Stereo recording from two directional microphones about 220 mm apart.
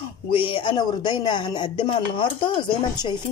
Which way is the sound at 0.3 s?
25° left (ahead or behind).